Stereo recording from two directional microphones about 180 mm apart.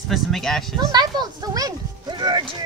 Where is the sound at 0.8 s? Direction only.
20° right (ahead or behind).